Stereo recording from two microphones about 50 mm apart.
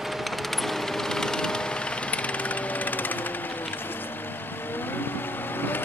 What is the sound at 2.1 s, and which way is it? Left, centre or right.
Jackhammer, left.